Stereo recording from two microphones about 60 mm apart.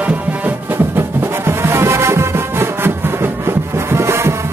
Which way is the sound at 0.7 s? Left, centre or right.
Right.